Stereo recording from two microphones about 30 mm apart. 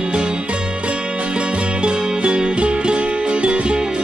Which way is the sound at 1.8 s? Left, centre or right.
Right.